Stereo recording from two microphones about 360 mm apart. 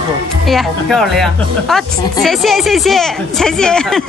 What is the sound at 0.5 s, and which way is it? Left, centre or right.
A woman's voice, centre.